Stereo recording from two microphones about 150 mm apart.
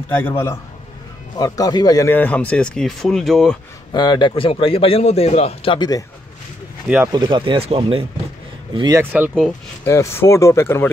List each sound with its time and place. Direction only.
0.1 s speech: 15° left (ahead or behind)
3.9 s a man's voice: 30° left (ahead or behind)
7.1 s speech: 30° right (ahead or behind)
8.9 s speech: 10° right (ahead or behind)
9.8 s speech: 15° left (ahead or behind)